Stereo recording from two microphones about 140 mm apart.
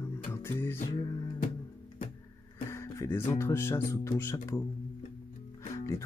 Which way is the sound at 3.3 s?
20° left (ahead or behind).